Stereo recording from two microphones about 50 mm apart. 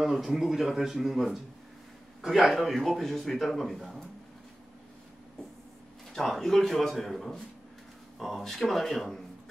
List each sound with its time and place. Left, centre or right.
0.0 s a man's voice: centre
6.1 s a man's voice: centre